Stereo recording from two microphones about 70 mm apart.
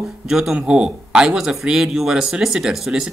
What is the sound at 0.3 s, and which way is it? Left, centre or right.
Speech, centre.